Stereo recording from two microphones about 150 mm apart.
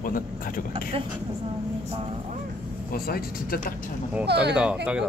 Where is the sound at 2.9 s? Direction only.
85° left; by 3.9 s 65° left (ahead or behind).